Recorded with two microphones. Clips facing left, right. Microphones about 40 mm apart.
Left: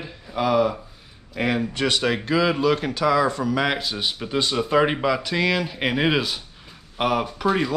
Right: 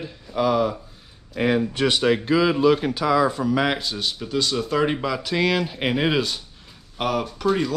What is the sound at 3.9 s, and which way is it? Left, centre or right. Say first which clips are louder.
Speech: left 1 dB; centre.